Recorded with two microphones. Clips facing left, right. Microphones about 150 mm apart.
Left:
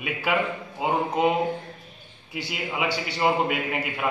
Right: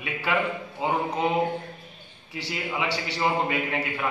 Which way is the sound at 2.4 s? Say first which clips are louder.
Left 1 dB; 10° left (ahead or behind).